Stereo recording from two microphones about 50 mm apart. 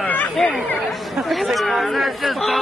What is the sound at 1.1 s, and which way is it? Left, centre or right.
Speech, centre.